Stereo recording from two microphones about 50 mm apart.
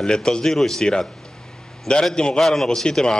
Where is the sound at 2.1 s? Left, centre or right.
Centre.